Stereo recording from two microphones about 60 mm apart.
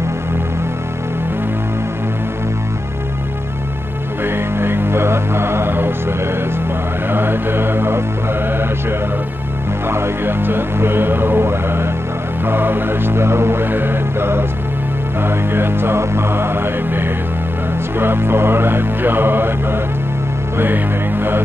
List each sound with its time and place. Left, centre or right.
4.2 s music: right
7.1 s mantra: right
9.8 s music: right